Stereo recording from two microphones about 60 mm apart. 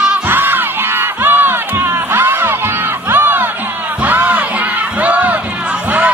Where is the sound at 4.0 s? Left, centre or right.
Right.